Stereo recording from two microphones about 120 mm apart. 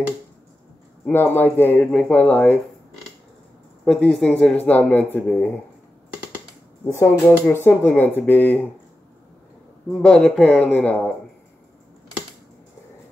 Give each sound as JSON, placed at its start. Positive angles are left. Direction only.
{"t": 1.0, "sound": "speech", "side_deg": 15}
{"t": 3.8, "sound": "speech", "side_deg": 5}
{"t": 7.2, "sound": "speech", "side_deg": 15}
{"t": 9.9, "sound": "speech", "side_deg": 5}